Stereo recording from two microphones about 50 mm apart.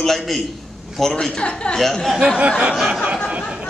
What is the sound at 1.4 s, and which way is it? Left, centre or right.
Speech, left.